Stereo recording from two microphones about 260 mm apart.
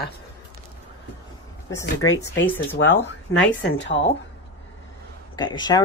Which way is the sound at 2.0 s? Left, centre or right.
Left.